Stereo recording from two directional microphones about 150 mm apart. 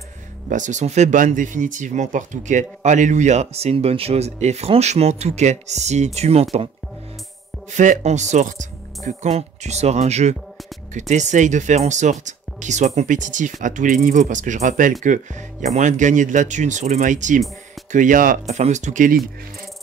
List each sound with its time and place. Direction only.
0.5 s speech: 55° right (ahead or behind)
7.7 s speech: 55° right (ahead or behind)
18.5 s speech: 50° right (ahead or behind)